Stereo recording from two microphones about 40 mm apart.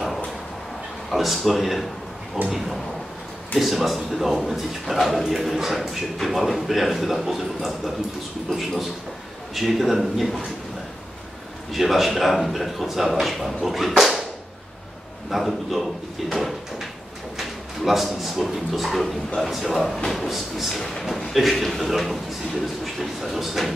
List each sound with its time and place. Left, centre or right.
1.1 s a man's voice: centre
2.4 s speech: right
3.5 s a man's voice: centre
11.7 s a man's voice: centre
15.2 s a man's voice: centre